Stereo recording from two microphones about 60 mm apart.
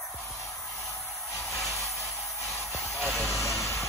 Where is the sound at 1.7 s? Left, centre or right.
Left.